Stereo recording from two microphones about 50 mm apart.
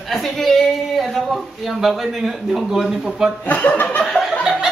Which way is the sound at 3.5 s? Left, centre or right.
Left.